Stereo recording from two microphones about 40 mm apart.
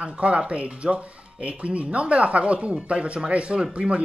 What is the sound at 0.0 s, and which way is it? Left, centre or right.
Speech, right.